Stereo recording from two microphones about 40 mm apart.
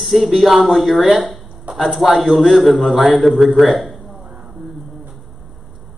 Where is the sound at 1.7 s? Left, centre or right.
Right.